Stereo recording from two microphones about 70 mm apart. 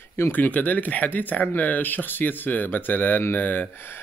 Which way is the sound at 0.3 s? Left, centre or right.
Left.